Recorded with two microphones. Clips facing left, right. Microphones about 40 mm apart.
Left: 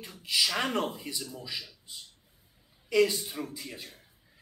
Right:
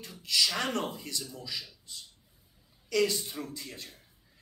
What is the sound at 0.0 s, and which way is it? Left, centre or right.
Speech, centre.